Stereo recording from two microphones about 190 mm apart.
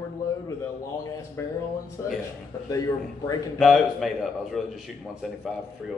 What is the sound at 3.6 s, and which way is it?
A man's voice, centre (ahead or behind).